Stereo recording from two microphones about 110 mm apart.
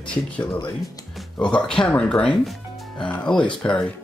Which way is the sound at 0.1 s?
10° left (ahead or behind).